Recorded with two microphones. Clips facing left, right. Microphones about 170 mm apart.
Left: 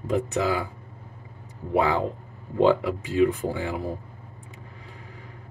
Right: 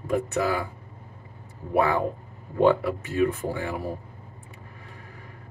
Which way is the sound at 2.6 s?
15° left (ahead or behind).